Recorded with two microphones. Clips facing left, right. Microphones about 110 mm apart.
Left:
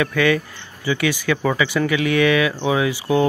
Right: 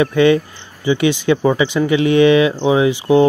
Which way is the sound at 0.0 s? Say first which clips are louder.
Right 6 dB; 25° right (ahead or behind).